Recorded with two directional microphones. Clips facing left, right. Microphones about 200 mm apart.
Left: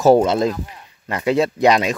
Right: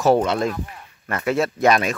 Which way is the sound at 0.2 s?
25° left (ahead or behind).